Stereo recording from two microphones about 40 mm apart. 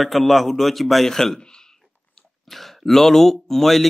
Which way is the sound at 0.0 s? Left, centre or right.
Centre.